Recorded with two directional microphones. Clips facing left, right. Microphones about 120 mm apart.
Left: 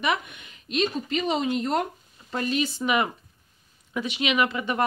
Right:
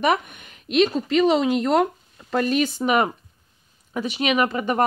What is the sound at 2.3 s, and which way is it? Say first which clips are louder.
Speech: right 6 dB; 55° right (ahead or behind).